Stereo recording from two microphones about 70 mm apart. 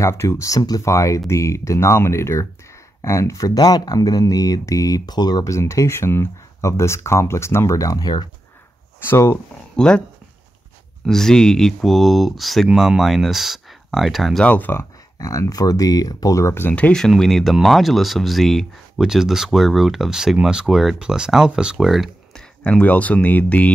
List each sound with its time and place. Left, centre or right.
0.0 s speech: left
0.6 s speech: left
0.8 s speech: left
5.4 s speech: left
9.0 s speech: left
9.8 s speech: centre
11.1 s speech: centre
14.4 s speech: left
15.1 s speech: left
17.1 s speech: centre
22.6 s speech: centre